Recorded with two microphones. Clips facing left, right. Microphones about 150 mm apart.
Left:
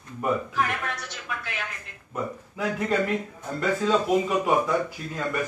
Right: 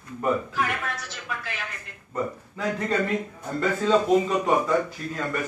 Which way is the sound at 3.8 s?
5° left (ahead or behind).